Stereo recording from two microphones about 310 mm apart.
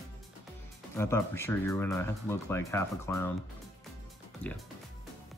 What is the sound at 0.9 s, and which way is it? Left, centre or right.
Speech, centre.